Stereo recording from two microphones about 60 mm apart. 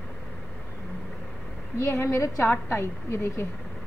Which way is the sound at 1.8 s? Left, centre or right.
Left.